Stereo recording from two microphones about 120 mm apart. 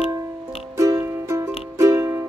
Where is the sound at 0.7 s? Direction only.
25° right (ahead or behind).